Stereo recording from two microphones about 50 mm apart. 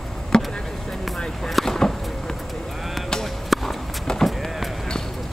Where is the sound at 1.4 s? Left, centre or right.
Centre.